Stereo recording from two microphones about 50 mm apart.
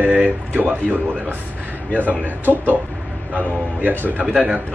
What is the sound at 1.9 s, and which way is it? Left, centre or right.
Speech, left.